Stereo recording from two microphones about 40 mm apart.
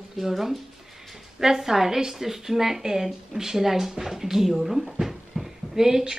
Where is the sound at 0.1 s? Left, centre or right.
Centre.